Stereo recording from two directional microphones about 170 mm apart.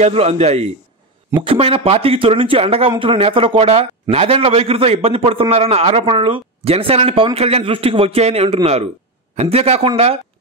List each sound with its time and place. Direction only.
0.0 s a man's voice: 40° right (ahead or behind)